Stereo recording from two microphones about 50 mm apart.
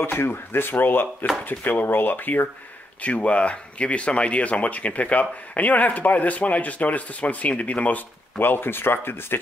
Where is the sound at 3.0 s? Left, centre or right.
Left.